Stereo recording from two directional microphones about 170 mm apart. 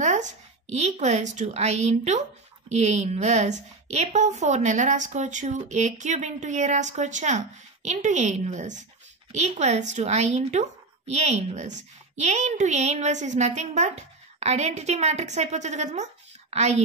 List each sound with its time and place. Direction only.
0.0 s a woman's voice: 45° right (ahead or behind)